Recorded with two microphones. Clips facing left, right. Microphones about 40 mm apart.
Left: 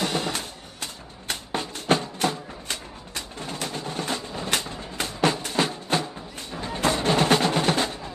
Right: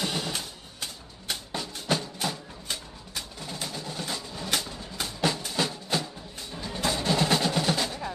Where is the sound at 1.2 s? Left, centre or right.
Left.